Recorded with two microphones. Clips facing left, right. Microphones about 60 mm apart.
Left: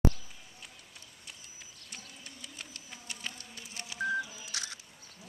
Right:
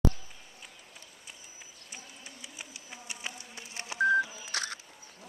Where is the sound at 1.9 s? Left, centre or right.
Centre.